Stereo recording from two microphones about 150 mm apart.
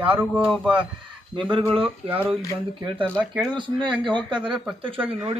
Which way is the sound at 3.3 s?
Centre (ahead or behind).